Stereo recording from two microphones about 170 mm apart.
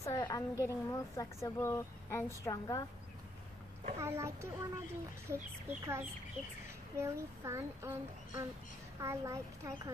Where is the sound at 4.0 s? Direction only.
15° right (ahead or behind).